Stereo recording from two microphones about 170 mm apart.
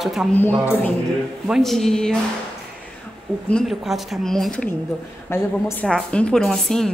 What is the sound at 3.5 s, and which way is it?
A woman's voice, centre (ahead or behind).